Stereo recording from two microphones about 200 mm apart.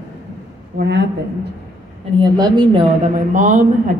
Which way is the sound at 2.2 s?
25° right (ahead or behind).